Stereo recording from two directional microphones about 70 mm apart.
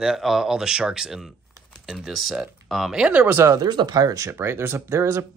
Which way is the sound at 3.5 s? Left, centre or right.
Right.